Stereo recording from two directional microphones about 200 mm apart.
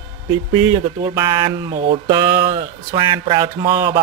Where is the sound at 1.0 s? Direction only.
20° right (ahead or behind).